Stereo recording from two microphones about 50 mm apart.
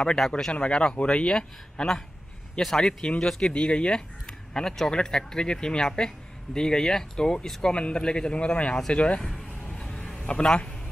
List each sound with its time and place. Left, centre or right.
0.3 s speech: centre
9.2 s a sound: centre
10.2 s speech: centre